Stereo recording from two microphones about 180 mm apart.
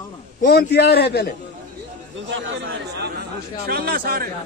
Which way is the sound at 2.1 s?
90° right.